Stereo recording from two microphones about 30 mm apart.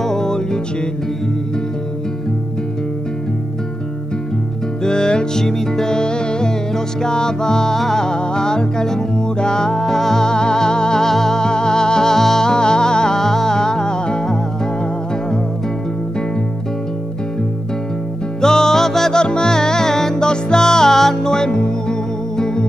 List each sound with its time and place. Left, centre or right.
0.0 s music: centre
4.8 s music: left
18.4 s music: centre
19.1 s music: left